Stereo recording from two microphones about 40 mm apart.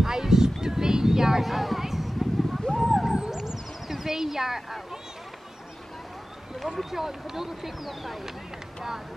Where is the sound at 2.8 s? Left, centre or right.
Centre.